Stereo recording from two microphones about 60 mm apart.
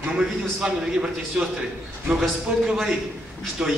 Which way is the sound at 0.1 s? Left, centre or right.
Centre.